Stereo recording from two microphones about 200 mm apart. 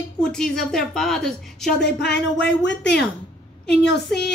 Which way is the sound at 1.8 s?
60° left (ahead or behind).